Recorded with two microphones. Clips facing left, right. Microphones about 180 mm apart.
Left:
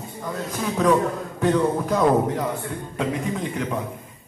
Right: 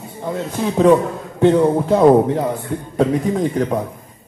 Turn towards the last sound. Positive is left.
turn(degrees=-40)  # may be behind; listen again after turning